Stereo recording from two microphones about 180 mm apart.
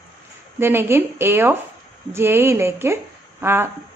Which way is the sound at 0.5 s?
15° right (ahead or behind).